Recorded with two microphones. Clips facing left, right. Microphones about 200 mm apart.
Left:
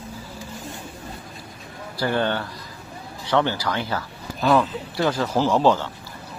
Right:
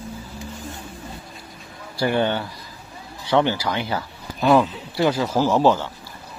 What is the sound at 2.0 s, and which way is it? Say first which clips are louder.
Speech: right 2 dB; 15° right (ahead or behind).